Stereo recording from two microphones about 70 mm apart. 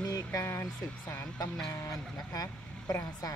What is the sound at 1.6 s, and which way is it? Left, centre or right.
Speech, left.